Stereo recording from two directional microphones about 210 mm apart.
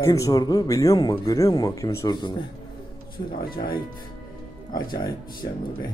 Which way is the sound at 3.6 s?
25° left (ahead or behind).